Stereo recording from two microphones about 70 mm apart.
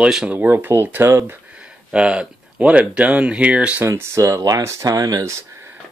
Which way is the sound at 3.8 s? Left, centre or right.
Right.